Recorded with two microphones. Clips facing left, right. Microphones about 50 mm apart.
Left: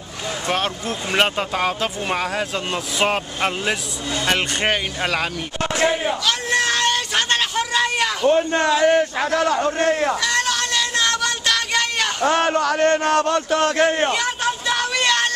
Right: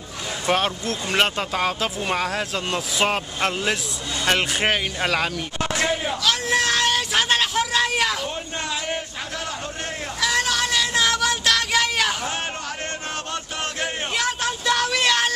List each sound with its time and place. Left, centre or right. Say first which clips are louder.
0.5 s speech: right 2 dB; centre
5.6 s a sound: left 4 dB; centre
6.2 s a sound: right 1 dB; centre
8.3 s a man's voice: left 12 dB; left
10.2 s music: left 1 dB; centre
12.3 s a man's voice: left 11 dB; left
14.1 s vehicle: left 2 dB; centre